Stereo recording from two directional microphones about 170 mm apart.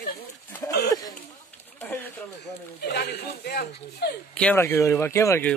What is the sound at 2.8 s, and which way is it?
Speech, 70° left (ahead or behind).